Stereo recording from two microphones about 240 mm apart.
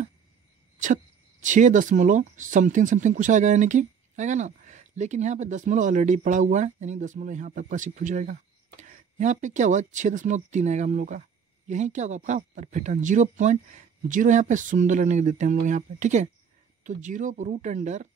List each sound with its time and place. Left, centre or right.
1.4 s speech: right